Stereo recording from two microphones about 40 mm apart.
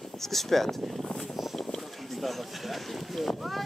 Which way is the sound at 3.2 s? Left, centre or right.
Centre.